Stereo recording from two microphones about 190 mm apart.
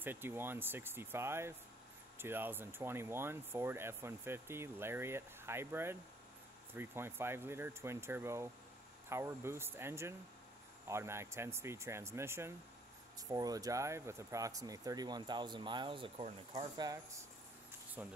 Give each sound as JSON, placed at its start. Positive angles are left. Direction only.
{"t": 0.0, "sound": "speech", "side_deg": -10}